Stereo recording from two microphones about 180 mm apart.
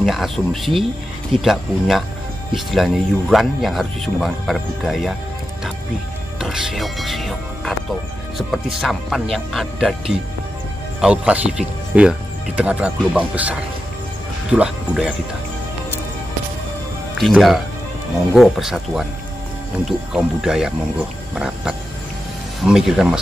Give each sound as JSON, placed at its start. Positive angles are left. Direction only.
{"t": 0.0, "sound": "speech", "side_deg": 0}
{"t": 6.4, "sound": "speech", "side_deg": -5}
{"t": 17.2, "sound": "speech", "side_deg": 0}